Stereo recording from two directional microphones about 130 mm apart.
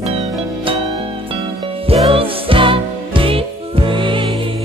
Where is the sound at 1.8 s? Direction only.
45° right (ahead or behind).